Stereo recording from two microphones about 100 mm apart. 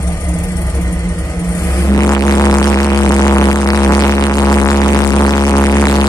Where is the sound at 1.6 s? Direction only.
30° left (ahead or behind).